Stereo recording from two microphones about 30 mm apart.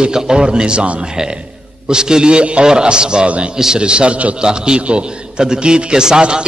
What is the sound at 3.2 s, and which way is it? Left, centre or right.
A man's voice, right.